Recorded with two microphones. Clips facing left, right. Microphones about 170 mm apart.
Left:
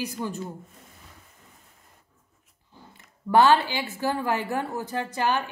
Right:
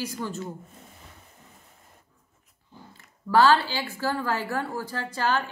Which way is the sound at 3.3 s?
20° left (ahead or behind).